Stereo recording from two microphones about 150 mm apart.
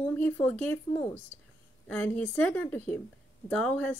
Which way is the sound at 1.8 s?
10° left (ahead or behind).